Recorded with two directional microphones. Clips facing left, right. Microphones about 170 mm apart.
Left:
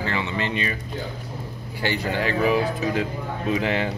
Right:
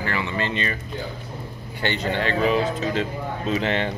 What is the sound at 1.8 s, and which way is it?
Speech, 10° left (ahead or behind).